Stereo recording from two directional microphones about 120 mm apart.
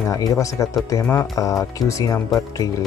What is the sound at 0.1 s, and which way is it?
Speech, 30° left (ahead or behind).